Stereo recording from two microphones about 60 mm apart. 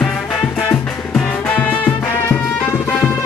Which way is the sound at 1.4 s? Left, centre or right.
Left.